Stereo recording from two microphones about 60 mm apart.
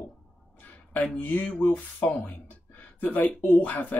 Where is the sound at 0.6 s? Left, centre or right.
Left.